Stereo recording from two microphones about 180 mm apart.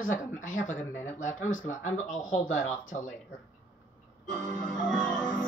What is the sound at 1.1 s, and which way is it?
Speech, 45° left (ahead or behind).